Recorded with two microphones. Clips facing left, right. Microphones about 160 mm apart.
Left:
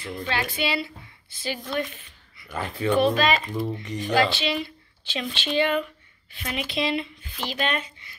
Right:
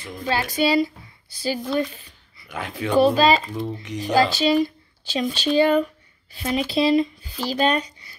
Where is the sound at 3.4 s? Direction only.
Centre (ahead or behind).